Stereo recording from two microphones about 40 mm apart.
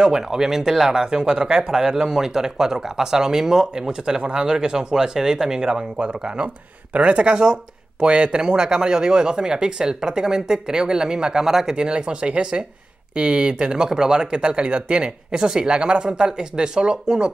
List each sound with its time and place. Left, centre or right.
0.0 s speech: centre